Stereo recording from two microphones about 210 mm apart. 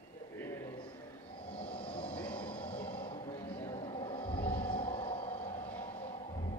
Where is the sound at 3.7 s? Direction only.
25° left (ahead or behind).